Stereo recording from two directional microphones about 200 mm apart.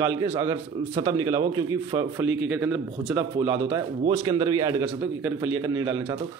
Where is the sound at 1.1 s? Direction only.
20° right (ahead or behind).